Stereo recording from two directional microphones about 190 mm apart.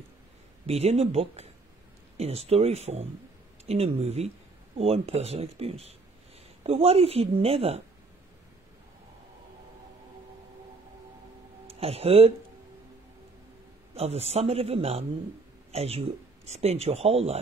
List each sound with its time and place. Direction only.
0.7 s speech: 35° right (ahead or behind)
11.6 s speech: 30° right (ahead or behind)
13.9 s speech: 35° right (ahead or behind)